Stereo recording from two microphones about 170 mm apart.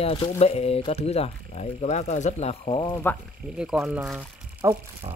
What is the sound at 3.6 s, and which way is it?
Speech, 5° right (ahead or behind).